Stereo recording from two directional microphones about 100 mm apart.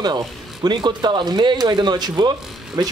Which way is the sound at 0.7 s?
50° right (ahead or behind).